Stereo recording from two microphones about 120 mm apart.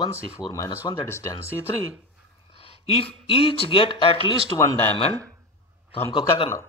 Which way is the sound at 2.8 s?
55° left (ahead or behind).